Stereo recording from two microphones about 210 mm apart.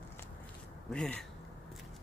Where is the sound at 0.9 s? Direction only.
5° left (ahead or behind).